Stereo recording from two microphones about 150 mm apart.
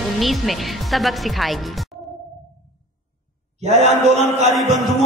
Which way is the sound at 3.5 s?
45° right (ahead or behind).